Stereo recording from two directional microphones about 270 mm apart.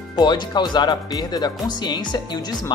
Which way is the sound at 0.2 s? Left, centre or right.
Centre.